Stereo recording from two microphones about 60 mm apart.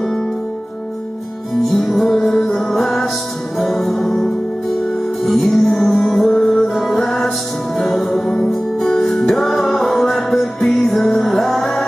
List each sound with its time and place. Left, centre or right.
1.6 s music: centre